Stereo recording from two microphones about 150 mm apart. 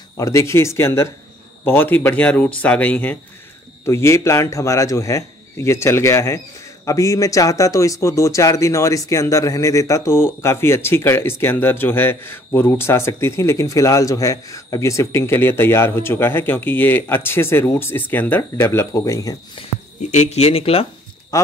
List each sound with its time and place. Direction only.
0.2 s a man's voice: 20° left (ahead or behind)
20.0 s speech: 55° left (ahead or behind)